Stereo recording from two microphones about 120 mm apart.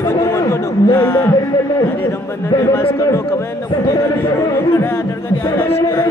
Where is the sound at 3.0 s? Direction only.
25° left (ahead or behind).